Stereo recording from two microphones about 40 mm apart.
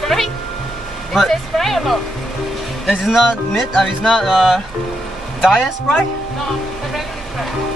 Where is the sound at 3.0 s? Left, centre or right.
Centre.